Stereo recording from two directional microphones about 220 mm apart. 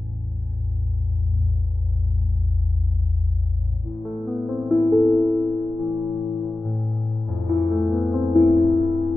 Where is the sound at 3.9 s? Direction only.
Centre (ahead or behind).